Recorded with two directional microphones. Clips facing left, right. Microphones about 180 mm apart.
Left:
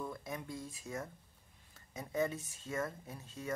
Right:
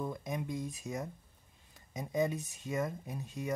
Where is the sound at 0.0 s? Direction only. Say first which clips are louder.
Right 5 dB; 20° right (ahead or behind).